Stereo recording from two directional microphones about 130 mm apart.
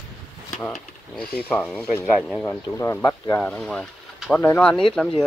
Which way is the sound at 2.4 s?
20° left (ahead or behind).